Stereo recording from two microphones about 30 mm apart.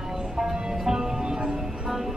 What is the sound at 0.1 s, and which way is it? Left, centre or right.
Music, centre.